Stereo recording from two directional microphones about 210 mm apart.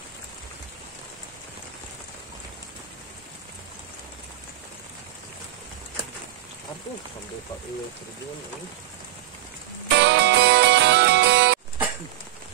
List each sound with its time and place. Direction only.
9.8 s music: 55° right (ahead or behind)